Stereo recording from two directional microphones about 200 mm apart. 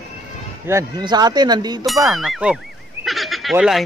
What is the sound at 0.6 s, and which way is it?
Speech, 15° right (ahead or behind).